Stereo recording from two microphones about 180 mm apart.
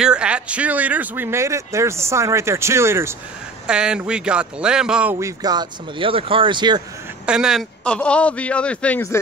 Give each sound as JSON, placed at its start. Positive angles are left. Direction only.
{"t": 0.0, "sound": "speech", "side_deg": -5}
{"t": 5.2, "sound": "speech", "side_deg": -20}
{"t": 7.2, "sound": "a man's voice", "side_deg": -5}